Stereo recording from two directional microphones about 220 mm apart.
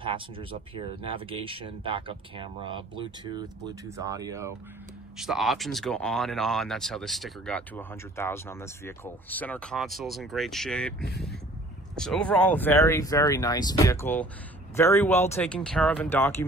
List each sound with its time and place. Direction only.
0.0 s speech: 25° right (ahead or behind)
5.1 s speech: centre (ahead or behind)